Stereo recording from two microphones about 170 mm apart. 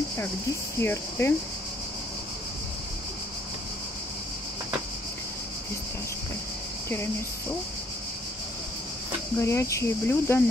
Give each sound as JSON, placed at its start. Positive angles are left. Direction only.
{"t": 0.7, "sound": "speech", "side_deg": 15}
{"t": 9.4, "sound": "speech", "side_deg": 15}